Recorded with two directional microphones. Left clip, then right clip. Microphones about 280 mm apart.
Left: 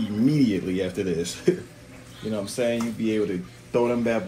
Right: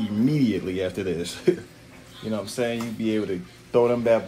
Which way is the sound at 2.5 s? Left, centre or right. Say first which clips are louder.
Left 3 dB; right.